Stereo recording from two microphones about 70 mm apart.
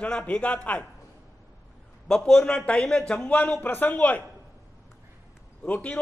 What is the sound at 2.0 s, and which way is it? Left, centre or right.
A man's voice, centre.